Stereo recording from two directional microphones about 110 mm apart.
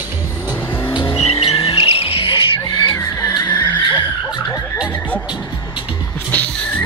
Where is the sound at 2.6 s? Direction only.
35° left (ahead or behind); by 4.0 s 20° left (ahead or behind).